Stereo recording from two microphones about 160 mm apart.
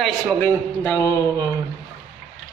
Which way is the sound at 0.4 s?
15° left (ahead or behind).